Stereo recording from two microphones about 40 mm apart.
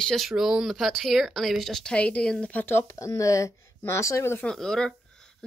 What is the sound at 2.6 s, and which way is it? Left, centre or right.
Speech, left.